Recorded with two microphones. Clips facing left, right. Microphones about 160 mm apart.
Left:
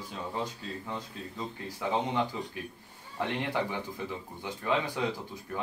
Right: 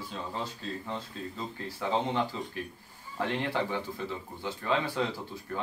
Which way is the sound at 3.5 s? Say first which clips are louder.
Right 1 dB; 15° left (ahead or behind).